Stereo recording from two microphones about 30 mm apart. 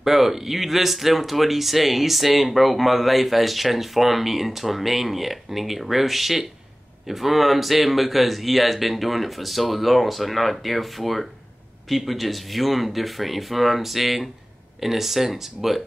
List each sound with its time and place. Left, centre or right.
0.0 s speech: centre